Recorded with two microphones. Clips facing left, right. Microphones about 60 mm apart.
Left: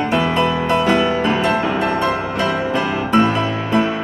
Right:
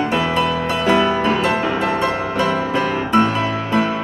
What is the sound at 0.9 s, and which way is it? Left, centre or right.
Music, right.